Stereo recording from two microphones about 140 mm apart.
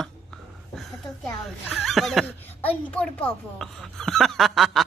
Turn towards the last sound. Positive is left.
turn(degrees=0)  # may be behind; listen again after turning